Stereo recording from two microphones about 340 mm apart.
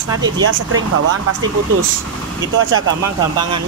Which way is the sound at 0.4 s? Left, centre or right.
Right.